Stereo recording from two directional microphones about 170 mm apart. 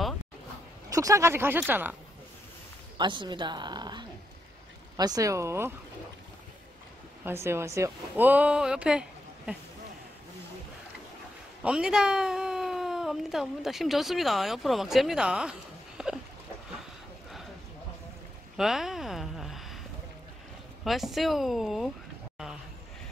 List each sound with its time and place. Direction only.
0.8 s speech: 20° right (ahead or behind)
3.0 s a woman's voice: 25° right (ahead or behind)
7.2 s speech: 15° right (ahead or behind)
11.6 s a woman's voice: 5° right (ahead or behind)
16.0 s a sound: 5° right (ahead or behind)
18.6 s speech: centre (ahead or behind)
20.8 s speech: centre (ahead or behind)